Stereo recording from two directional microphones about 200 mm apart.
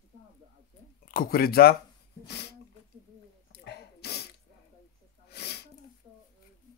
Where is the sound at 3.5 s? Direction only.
55° left (ahead or behind).